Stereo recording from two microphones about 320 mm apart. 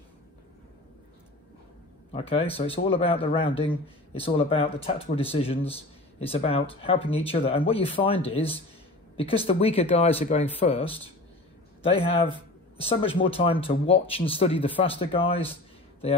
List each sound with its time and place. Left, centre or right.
2.1 s speech: centre